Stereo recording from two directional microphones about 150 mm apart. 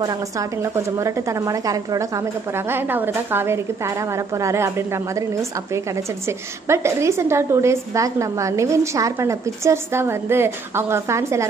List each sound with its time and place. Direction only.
0.0 s a woman's voice: 20° right (ahead or behind)
6.7 s a woman's voice: 20° right (ahead or behind)